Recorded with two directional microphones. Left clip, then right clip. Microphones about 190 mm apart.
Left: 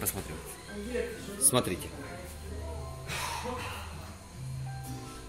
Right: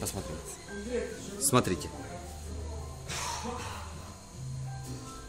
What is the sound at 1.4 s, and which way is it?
Speech, 40° right (ahead or behind).